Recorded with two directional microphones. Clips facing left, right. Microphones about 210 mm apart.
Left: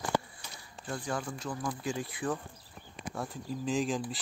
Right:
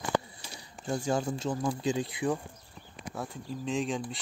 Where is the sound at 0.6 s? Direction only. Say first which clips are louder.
Right 6 dB; 20° right (ahead or behind).